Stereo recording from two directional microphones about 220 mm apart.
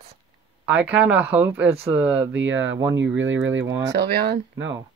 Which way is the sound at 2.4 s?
60° right (ahead or behind).